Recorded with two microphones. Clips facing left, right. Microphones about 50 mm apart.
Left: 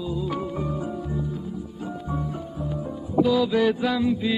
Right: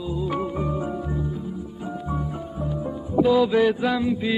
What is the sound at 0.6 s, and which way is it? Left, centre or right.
Music, right.